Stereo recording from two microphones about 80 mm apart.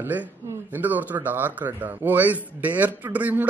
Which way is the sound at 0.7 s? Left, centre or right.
Right.